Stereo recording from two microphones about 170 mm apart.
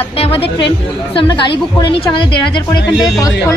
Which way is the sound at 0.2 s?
35° left (ahead or behind).